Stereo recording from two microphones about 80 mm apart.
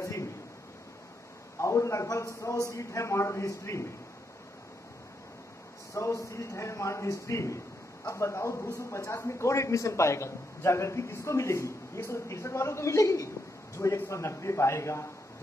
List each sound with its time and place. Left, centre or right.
0.0 s a sound: left
1.6 s a man's voice: left
5.9 s a man's voice: left